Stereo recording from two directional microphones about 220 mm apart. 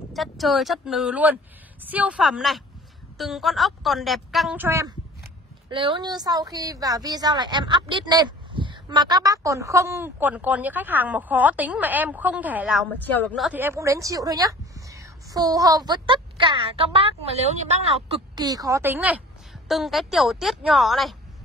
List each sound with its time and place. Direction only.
0.1 s speech: centre (ahead or behind)
5.7 s a woman's voice: 20° right (ahead or behind); by 12.8 s 5° right (ahead or behind)
13.0 s a woman's voice: 5° left (ahead or behind)
13.5 s a woman's voice: 10° right (ahead or behind); by 18.0 s 30° right (ahead or behind)
18.3 s a woman's voice: 15° right (ahead or behind); by 21.2 s centre (ahead or behind)